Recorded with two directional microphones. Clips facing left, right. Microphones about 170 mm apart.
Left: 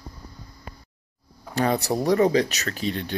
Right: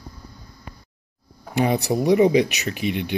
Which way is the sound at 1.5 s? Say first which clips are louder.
Right 2 dB; 15° right (ahead or behind).